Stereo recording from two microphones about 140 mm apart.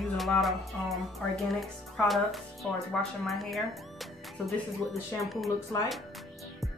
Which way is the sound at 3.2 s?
Centre (ahead or behind).